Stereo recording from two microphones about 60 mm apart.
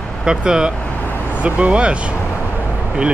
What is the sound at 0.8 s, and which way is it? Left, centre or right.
Vehicle, left.